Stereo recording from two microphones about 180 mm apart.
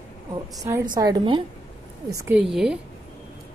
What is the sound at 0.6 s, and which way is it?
A woman's voice, 20° right (ahead or behind).